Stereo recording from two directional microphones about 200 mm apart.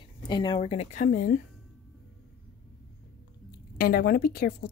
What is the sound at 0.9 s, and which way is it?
Speech, 45° left (ahead or behind).